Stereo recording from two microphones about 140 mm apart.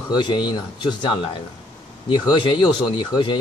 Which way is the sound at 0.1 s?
35° left (ahead or behind).